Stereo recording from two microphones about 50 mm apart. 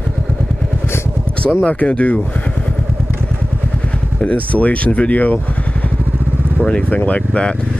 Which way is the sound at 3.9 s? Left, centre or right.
Left.